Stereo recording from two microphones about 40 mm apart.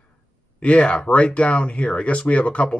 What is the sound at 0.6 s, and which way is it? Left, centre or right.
Speech, left.